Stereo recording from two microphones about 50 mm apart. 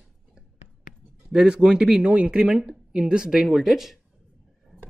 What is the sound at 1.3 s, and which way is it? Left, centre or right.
Speech, centre.